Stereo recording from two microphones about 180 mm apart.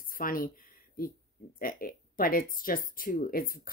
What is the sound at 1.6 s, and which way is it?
Speech, 50° left (ahead or behind).